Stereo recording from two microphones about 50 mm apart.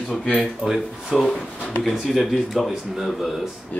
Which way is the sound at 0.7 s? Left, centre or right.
Centre.